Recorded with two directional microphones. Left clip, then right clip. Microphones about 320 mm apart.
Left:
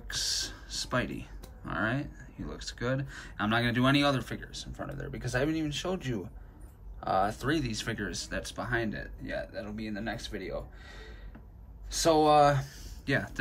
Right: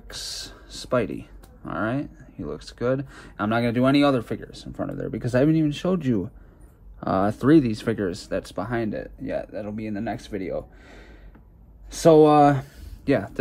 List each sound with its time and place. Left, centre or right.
0.1 s speech: centre